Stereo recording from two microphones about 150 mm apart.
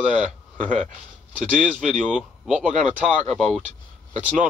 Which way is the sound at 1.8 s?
5° right (ahead or behind).